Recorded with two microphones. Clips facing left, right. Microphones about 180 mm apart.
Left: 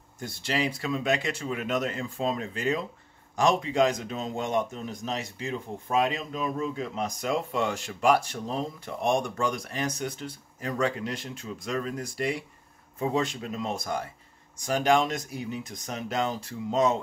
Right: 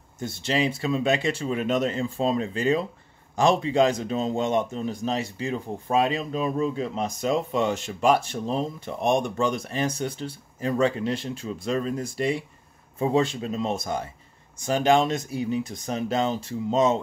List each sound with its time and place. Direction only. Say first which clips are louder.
0.2 s speech: right 4 dB; 25° right (ahead or behind)